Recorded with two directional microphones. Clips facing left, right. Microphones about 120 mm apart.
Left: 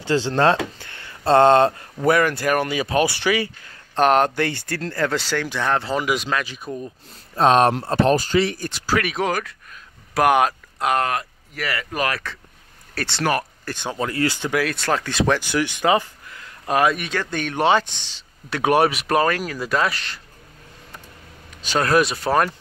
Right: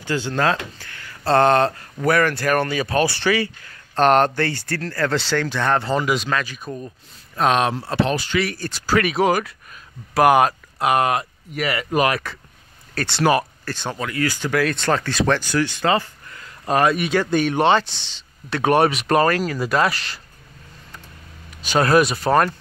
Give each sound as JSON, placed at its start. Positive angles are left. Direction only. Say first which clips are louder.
{"t": 0.0, "sound": "speech", "louder": "left 3 dB", "side_deg": 30}
{"t": 7.3, "sound": "speech", "louder": "left 3 dB", "side_deg": 30}
{"t": 7.9, "sound": "speech", "louder": "left 3 dB", "side_deg": 45}
{"t": 8.5, "sound": "speech", "louder": "even", "side_deg": 20}
{"t": 8.8, "sound": "speech", "louder": "right 4 dB", "side_deg": 0}
{"t": 11.1, "sound": "speech", "louder": "right 3 dB", "side_deg": -20}
{"t": 12.9, "sound": "speech", "louder": "right 2 dB", "side_deg": 0}
{"t": 13.2, "sound": "speech", "louder": "right 4 dB", "side_deg": -15}
{"t": 13.9, "sound": "speech", "louder": "left 3 dB", "side_deg": 30}
{"t": 14.5, "sound": "speech", "louder": "right 2 dB", "side_deg": 5}
{"t": 16.3, "sound": "speech", "louder": "right 1 dB", "side_deg": 0}
{"t": 17.6, "sound": "speech", "louder": "left 3 dB", "side_deg": 10}
{"t": 21.5, "sound": "speech", "louder": "right 2 dB", "side_deg": -5}